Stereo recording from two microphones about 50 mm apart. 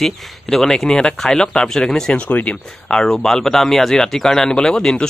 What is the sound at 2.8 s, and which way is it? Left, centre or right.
Speech, centre.